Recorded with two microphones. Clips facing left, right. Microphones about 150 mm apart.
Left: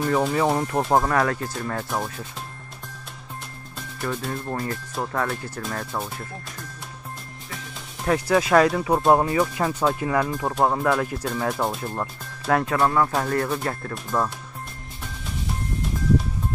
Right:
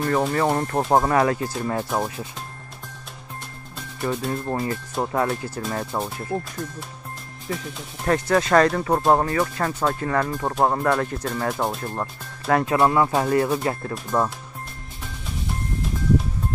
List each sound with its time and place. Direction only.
0.0 s speech: centre (ahead or behind)
4.0 s speech: 5° right (ahead or behind)
5.7 s speech: 20° right (ahead or behind)
8.0 s speech: 5° left (ahead or behind); by 14.3 s 15° right (ahead or behind)